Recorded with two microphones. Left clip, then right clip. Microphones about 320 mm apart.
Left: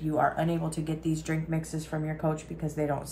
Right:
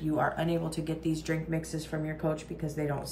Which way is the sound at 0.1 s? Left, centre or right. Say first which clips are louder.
Left 3 dB; centre.